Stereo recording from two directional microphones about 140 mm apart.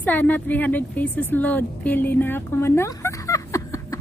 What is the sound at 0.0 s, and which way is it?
A woman's voice, 10° left (ahead or behind).